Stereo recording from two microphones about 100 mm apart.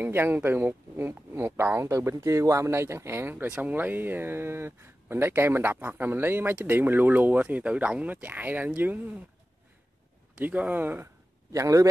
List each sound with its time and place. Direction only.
0.0 s speech: 20° right (ahead or behind)
10.4 s speech: 15° right (ahead or behind)
11.5 s a man's voice: 30° right (ahead or behind)